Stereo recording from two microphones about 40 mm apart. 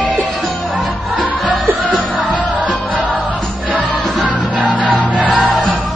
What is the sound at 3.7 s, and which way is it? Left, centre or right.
Music, right.